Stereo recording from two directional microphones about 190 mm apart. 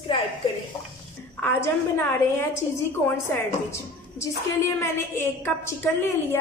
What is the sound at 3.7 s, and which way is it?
A woman's voice, 15° left (ahead or behind).